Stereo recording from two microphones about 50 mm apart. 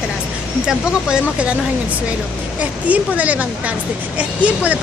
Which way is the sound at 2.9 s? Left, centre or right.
Right.